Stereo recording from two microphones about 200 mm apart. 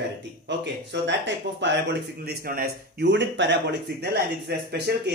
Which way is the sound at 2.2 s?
50° right (ahead or behind).